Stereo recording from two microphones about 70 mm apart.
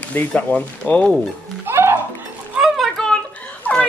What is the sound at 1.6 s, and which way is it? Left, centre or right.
Music, right.